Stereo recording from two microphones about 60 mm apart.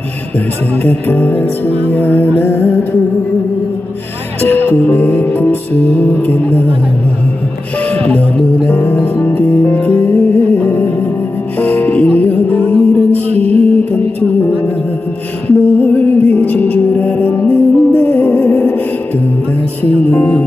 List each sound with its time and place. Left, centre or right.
0.8 s music: left
4.4 s music: left
8.6 s music: left
9.2 s music: left
15.4 s music: left
19.8 s music: left